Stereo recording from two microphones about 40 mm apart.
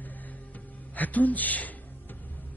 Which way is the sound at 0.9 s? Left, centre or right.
Left.